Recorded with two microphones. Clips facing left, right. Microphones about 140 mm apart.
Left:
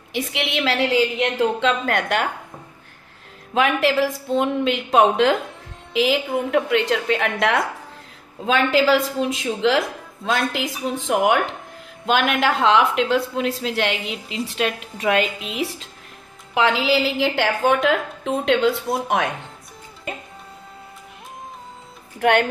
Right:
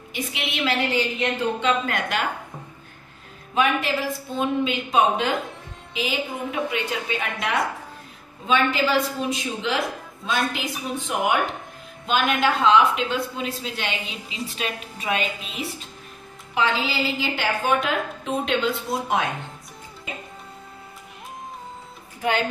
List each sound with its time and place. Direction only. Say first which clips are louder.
0.1 s a woman's voice: left 6 dB; 85° left
1.6 s a woman's voice: left 3 dB; 65° left (ahead or behind)
3.5 s a woman's voice: left 4 dB; 90° left; by 19.3 s 75° left (ahead or behind)
22.2 s speech: left 6 dB; 65° left (ahead or behind)